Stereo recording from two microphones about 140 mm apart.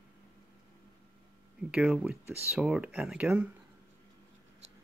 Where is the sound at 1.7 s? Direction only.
5° right (ahead or behind).